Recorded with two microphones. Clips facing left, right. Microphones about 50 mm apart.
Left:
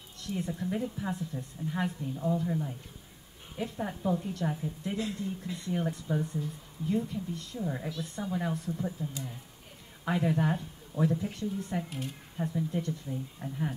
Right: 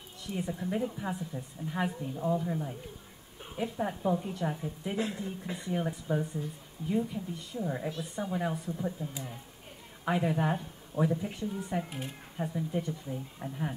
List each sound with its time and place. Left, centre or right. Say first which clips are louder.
0.2 s speech: left 1 dB; centre
4.9 s speech: right 2 dB; right